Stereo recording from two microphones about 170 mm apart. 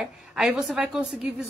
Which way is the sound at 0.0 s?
5° right (ahead or behind).